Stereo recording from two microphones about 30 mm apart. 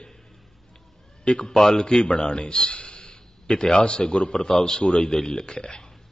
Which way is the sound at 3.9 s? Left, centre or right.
Left.